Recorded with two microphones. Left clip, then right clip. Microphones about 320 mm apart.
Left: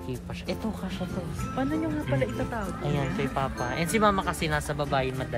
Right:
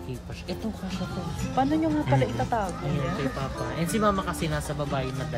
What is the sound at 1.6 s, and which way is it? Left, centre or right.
Speech, right.